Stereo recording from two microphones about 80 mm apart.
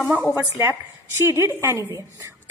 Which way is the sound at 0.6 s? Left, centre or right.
Right.